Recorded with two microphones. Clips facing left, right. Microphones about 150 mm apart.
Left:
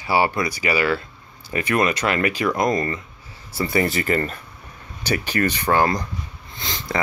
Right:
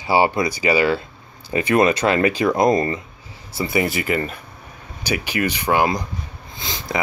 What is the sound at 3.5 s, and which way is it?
Speech, 10° right (ahead or behind).